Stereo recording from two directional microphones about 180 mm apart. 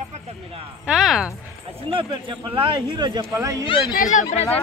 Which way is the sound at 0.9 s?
5° right (ahead or behind).